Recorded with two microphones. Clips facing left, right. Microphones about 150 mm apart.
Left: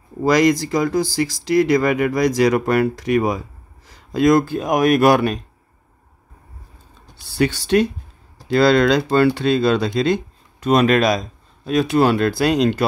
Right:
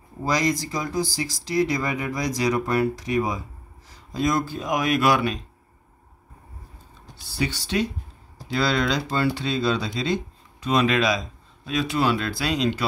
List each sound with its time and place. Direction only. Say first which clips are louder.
0.2 s speech: left 8 dB; 70° left (ahead or behind); by 5.4 s 50° left (ahead or behind)
7.3 s speech: left 9 dB; 55° left (ahead or behind)